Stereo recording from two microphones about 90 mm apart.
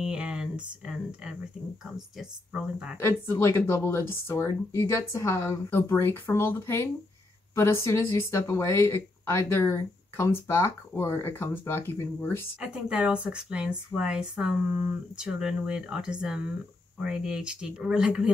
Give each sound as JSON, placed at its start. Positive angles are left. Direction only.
{"t": 0.0, "sound": "speech", "side_deg": -10}
{"t": 3.0, "sound": "speech", "side_deg": 30}
{"t": 12.8, "sound": "speech", "side_deg": -10}